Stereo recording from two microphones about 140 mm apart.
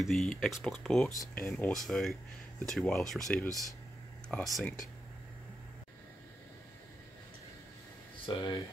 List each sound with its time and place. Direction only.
0.0 s speech: centre (ahead or behind)
8.3 s speech: 35° left (ahead or behind)